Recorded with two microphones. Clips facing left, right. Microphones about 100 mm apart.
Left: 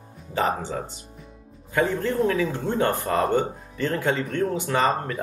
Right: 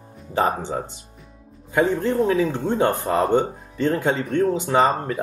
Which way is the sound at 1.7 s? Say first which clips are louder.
Right 3 dB; 20° right (ahead or behind).